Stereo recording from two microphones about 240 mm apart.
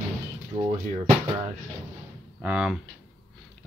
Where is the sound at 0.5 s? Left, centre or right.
Right.